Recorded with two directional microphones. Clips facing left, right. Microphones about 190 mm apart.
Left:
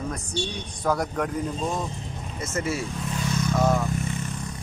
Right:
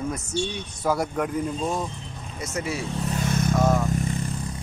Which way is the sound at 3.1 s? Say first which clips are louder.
Right 2 dB; 50° right (ahead or behind).